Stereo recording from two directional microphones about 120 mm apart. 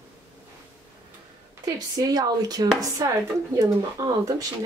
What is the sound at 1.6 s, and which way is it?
Speech, 30° right (ahead or behind).